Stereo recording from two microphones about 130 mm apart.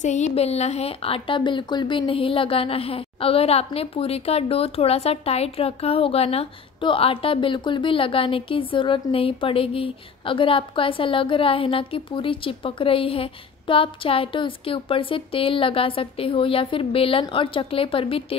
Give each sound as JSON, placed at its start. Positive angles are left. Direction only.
{"t": 0.0, "sound": "a woman's voice", "side_deg": 65}